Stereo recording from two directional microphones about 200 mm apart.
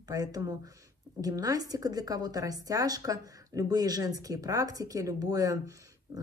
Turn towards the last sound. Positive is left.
turn(degrees=-15)  # may be behind; listen again after turning